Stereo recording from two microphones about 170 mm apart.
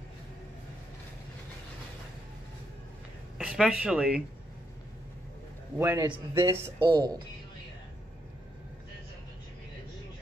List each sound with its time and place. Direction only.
3.3 s speech: 5° right (ahead or behind)
5.8 s a man's voice: 15° right (ahead or behind)
6.8 s a woman's voice: 25° right (ahead or behind)